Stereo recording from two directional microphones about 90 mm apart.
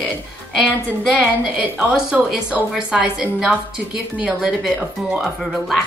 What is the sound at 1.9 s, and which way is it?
A woman's voice, 5° right (ahead or behind).